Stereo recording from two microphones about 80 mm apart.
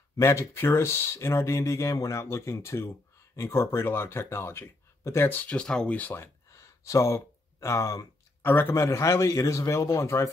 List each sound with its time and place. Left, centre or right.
0.2 s speech: left
5.3 s speech: centre
5.9 s speech: left
6.5 s a sound: left
8.4 s speech: left
8.8 s speech: left